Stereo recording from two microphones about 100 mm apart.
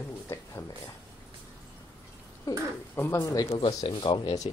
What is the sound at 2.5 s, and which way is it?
Speech, 35° left (ahead or behind).